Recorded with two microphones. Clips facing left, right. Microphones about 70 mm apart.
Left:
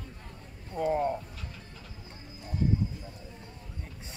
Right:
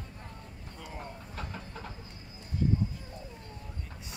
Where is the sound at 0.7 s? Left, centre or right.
Left.